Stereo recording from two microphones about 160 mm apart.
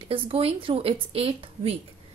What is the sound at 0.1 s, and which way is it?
A woman's voice, 35° right (ahead or behind).